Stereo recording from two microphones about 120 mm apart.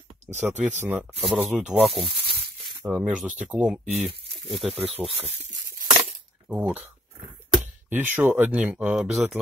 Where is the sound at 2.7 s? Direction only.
10° right (ahead or behind).